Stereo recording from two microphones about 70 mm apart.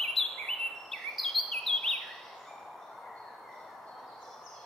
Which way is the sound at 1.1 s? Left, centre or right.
Centre.